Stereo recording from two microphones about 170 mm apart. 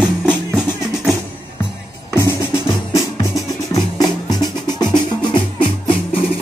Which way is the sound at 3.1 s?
20° left (ahead or behind).